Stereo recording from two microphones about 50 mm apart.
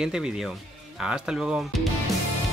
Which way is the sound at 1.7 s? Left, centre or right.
Centre.